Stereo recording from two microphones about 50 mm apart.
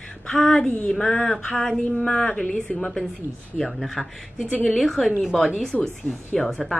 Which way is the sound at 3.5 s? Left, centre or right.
Centre.